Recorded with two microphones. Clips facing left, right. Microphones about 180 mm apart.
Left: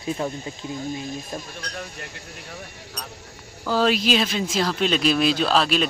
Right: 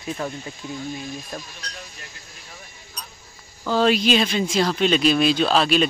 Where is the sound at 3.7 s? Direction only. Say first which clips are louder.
Right 2 dB; 5° left (ahead or behind).